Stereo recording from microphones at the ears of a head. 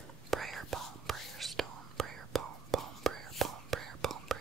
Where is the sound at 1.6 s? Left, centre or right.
Right.